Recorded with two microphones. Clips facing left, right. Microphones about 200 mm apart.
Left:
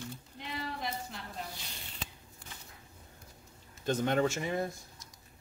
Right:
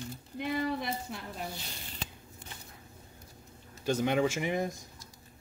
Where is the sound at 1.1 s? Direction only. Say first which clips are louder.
Right 5 dB; 60° right (ahead or behind).